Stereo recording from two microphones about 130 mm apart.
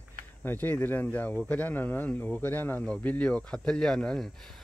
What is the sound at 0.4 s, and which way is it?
Speech, 15° left (ahead or behind).